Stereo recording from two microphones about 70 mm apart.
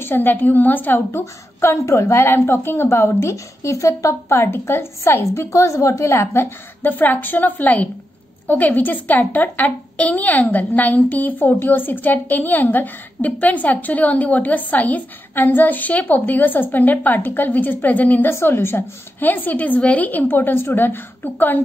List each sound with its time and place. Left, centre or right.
0.0 s a woman's voice: left
6.9 s a woman's voice: left
18.3 s a woman's voice: left